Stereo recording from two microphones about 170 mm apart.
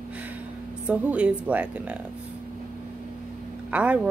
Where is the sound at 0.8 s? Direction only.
5° right (ahead or behind).